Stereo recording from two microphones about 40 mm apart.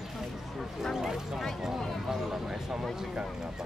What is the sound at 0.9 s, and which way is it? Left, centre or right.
Speech, centre.